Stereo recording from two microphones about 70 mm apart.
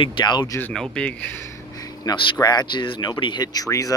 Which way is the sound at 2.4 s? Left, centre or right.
Left.